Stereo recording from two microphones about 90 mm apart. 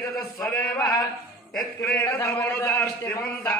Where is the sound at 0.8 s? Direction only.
45° left (ahead or behind).